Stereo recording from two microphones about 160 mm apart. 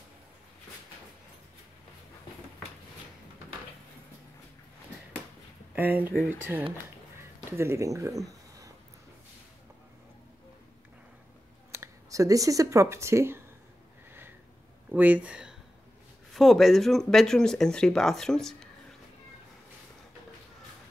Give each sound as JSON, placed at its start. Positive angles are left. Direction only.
{"t": 5.8, "sound": "speech", "side_deg": -10}
{"t": 11.7, "sound": "speech", "side_deg": -20}
{"t": 14.9, "sound": "speech", "side_deg": -10}